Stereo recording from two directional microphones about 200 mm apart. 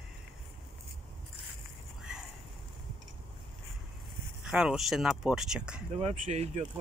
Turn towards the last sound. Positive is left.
turn(degrees=-35)  # may be behind; listen again after turning